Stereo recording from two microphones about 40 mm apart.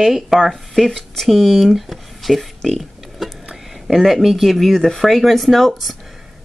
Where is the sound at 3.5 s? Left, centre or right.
Centre.